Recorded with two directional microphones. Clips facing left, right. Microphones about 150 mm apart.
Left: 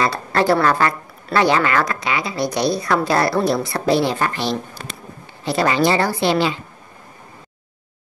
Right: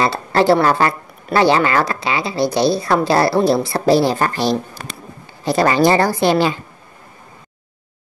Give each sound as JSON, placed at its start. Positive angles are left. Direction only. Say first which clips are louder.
{"t": 0.0, "sound": "a woman's voice", "louder": "right 3 dB", "side_deg": -30}